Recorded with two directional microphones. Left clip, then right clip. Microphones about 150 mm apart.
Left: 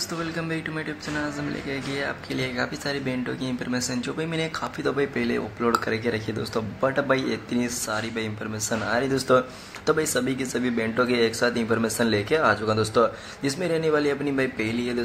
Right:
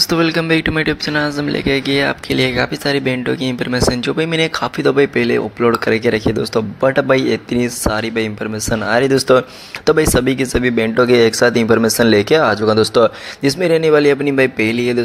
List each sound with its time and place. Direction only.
0.0 s speech: 55° right (ahead or behind)